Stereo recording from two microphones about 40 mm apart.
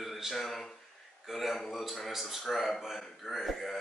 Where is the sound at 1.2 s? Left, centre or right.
Centre.